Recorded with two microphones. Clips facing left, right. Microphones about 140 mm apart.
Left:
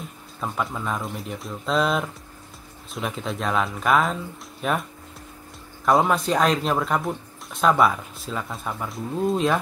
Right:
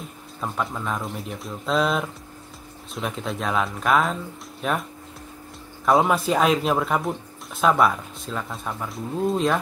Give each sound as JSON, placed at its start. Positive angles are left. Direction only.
{"t": 0.4, "sound": "speech", "side_deg": 0}
{"t": 5.9, "sound": "speech", "side_deg": 0}